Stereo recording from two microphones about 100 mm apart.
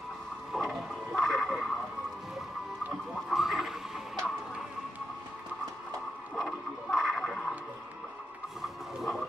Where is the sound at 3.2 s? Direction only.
Centre (ahead or behind).